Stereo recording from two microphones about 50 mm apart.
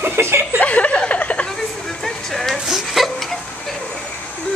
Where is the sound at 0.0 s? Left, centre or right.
Right.